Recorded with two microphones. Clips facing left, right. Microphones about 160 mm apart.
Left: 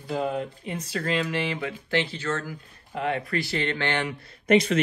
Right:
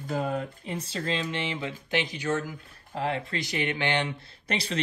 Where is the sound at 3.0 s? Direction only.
25° right (ahead or behind).